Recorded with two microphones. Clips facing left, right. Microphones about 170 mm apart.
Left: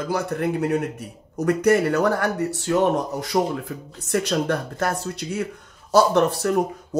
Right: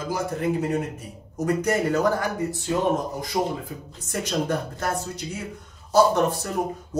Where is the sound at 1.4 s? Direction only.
65° left (ahead or behind).